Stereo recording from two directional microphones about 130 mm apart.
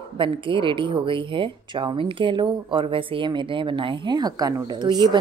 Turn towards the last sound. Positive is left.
turn(degrees=-35)  # may be behind; listen again after turning